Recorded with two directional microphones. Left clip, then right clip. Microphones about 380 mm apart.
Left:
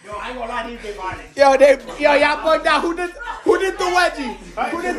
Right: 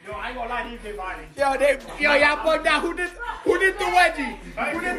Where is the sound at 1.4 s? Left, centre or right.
Centre.